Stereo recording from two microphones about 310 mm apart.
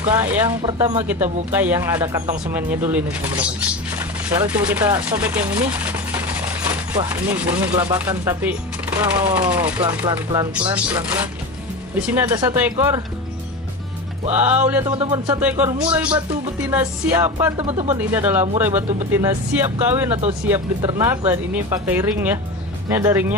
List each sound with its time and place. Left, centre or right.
0.2 s speech: centre
14.4 s speech: centre
17.6 s speech: centre
17.9 s speech: centre